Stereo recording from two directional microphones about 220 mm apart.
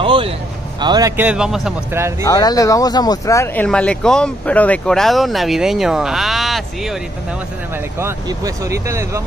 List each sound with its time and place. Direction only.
0.0 s vehicle: 25° right (ahead or behind)
0.7 s speech: 20° right (ahead or behind); by 1.7 s centre (ahead or behind)
2.2 s speech: 15° left (ahead or behind); by 7.0 s centre (ahead or behind)
8.0 s speech: 15° right (ahead or behind)